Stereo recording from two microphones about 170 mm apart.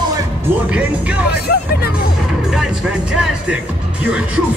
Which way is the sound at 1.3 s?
65° left (ahead or behind).